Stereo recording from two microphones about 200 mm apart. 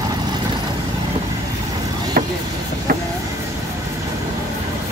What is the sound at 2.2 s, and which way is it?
Vehicle, 50° right (ahead or behind).